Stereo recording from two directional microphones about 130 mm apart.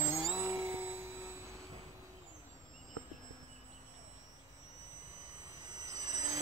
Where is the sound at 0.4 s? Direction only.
20° right (ahead or behind).